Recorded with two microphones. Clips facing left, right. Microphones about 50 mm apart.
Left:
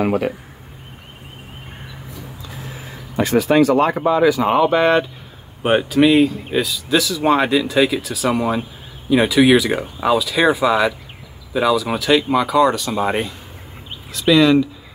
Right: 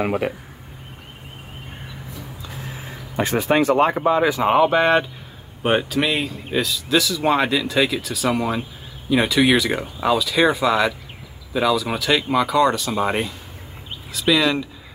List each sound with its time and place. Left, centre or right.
0.0 s speech: centre
3.2 s speech: right; by 14.7 s centre